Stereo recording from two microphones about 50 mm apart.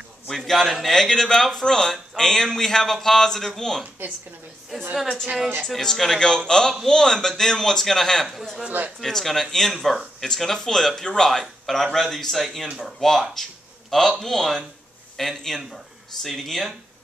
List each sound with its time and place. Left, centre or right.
0.5 s a man's voice: centre
8.6 s speech: right
9.0 s a man's voice: centre
13.3 s a sound: centre
14.2 s a man's voice: centre